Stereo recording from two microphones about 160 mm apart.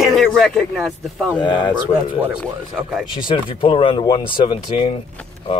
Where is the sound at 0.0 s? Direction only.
Centre (ahead or behind).